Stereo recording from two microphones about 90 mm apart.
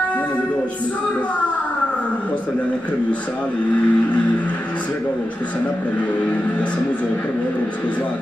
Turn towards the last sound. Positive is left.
turn(degrees=15)  # may be behind; listen again after turning